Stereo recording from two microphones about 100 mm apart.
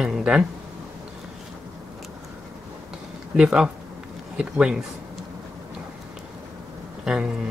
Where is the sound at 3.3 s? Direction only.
5° right (ahead or behind).